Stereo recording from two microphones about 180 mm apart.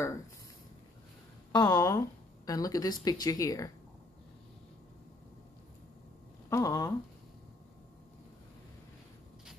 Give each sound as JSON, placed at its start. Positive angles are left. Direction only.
{"t": 1.5, "sound": "speech", "side_deg": 25}
{"t": 6.5, "sound": "speech", "side_deg": 20}